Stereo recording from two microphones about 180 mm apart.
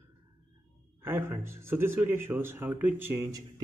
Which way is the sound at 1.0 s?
10° right (ahead or behind).